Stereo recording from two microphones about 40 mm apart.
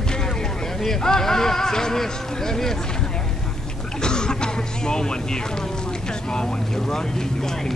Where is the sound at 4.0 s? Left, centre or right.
Centre.